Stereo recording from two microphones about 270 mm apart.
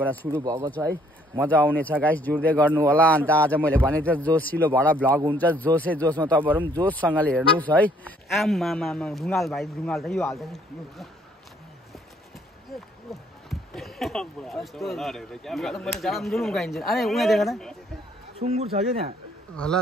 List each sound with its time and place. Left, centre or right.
0.1 s speech: centre
0.4 s speech: centre
1.5 s speech: centre
6.6 s speech: centre
7.2 s speech: centre
13.5 s speech: centre
18.4 s speech: right
19.5 s speech: centre